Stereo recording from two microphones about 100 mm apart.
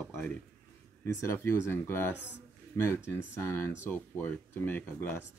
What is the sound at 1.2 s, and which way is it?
Speech, 25° left (ahead or behind).